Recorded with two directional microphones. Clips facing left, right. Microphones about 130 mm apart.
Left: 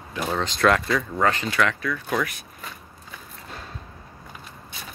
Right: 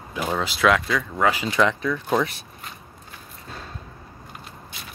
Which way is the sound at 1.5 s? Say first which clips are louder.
Right 3 dB; 20° right (ahead or behind).